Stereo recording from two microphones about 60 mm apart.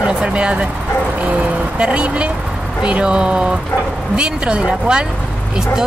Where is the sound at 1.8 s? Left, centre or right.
Centre.